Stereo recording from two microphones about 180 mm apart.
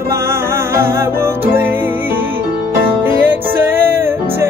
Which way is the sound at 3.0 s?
10° right (ahead or behind).